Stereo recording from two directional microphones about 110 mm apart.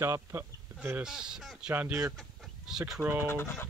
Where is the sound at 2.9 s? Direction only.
20° right (ahead or behind).